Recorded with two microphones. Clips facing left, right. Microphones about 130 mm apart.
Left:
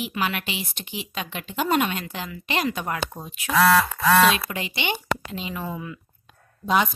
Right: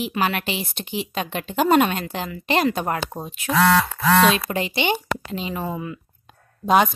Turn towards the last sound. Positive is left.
turn(degrees=-55)  # may be behind; listen again after turning